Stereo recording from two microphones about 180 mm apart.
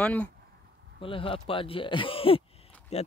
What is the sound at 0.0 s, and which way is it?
Speech, 10° left (ahead or behind).